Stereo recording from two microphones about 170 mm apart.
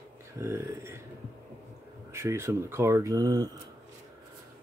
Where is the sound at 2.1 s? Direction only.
15° right (ahead or behind).